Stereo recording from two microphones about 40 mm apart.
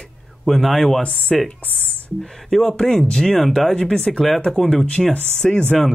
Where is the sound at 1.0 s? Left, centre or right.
Left.